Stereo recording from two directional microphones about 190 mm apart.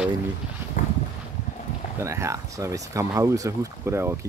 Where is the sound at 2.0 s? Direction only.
15° right (ahead or behind).